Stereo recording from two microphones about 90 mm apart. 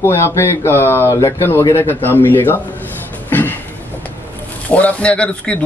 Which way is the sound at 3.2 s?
20° left (ahead or behind).